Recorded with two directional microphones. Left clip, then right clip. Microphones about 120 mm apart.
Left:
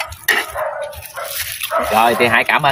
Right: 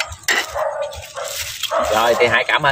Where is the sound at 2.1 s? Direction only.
25° right (ahead or behind).